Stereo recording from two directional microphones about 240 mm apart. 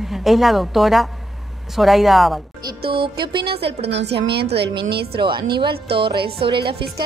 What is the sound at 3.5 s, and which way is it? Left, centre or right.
A woman's voice, right.